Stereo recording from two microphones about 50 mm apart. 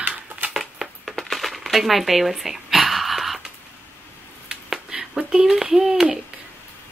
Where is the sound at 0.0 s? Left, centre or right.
Right.